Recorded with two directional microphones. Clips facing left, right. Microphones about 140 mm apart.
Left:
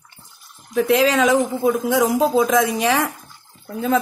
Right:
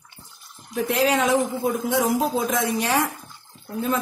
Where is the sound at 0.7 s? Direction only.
90° left.